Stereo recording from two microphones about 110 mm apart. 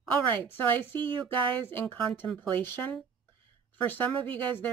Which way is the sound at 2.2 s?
5° left (ahead or behind).